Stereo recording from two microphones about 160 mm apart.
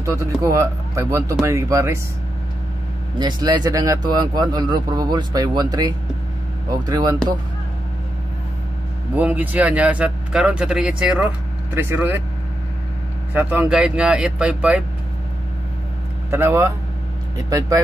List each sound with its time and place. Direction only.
0.2 s speech: 20° right (ahead or behind)
3.2 s speech: 25° right (ahead or behind)
9.1 s speech: 10° right (ahead or behind)
13.3 s speech: 10° right (ahead or behind)
16.3 s speech: 15° right (ahead or behind)